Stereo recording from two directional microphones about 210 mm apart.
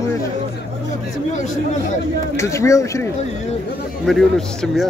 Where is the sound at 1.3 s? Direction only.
35° left (ahead or behind).